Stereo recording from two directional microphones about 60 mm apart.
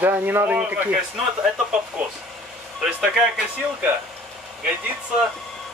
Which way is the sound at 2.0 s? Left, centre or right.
Right.